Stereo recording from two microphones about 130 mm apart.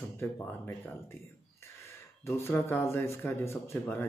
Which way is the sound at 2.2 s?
20° left (ahead or behind).